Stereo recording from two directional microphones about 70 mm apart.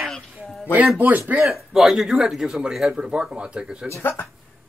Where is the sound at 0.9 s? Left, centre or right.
Right.